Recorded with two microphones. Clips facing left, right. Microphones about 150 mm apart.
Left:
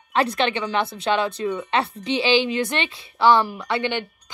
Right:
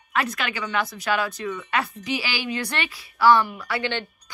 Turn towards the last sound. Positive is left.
turn(degrees=20)  # may be behind; listen again after turning